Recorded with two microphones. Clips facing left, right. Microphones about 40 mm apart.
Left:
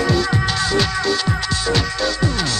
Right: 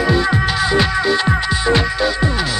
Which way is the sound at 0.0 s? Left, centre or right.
Centre.